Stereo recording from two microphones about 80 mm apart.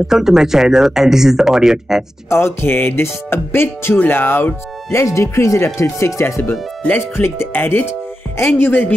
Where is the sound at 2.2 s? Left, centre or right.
Left.